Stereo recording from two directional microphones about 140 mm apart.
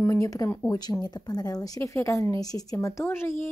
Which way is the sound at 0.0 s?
20° left (ahead or behind).